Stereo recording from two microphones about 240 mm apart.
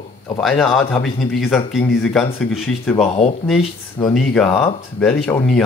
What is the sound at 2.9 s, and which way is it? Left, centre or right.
Speech, left.